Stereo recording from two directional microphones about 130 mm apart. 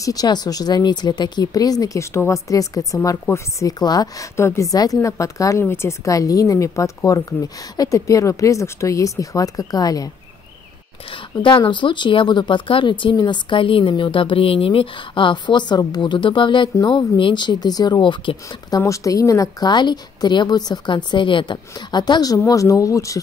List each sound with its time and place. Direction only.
0.0 s speech: 30° left (ahead or behind)
11.4 s speech: 40° left (ahead or behind)
18.8 s speech: 25° left (ahead or behind)